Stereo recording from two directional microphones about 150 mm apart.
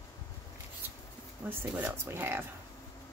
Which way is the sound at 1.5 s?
10° right (ahead or behind).